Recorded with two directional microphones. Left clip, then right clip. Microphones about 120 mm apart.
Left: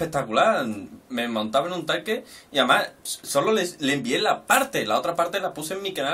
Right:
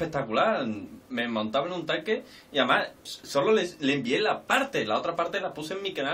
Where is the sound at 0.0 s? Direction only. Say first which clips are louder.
Left 5 dB; 15° left (ahead or behind).